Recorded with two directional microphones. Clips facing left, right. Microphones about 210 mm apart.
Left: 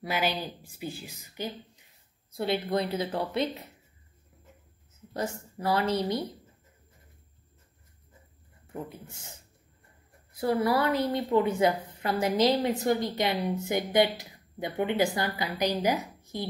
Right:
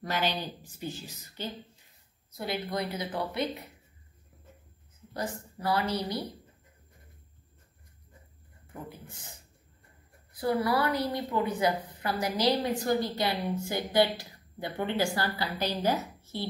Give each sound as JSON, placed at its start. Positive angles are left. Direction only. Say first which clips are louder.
{"t": 0.0, "sound": "speech", "louder": "left 1 dB", "side_deg": 10}
{"t": 2.3, "sound": "a woman's voice", "louder": "left 5 dB", "side_deg": 25}
{"t": 5.1, "sound": "a woman's voice", "louder": "left 2 dB", "side_deg": 25}
{"t": 10.4, "sound": "a woman's voice", "louder": "left 2 dB", "side_deg": 25}